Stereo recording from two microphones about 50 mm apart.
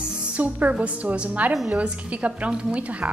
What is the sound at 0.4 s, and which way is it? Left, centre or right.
A woman's voice, right.